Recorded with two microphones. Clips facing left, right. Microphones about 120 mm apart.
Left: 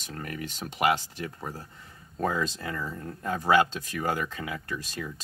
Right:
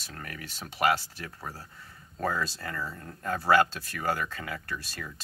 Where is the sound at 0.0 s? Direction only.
15° left (ahead or behind).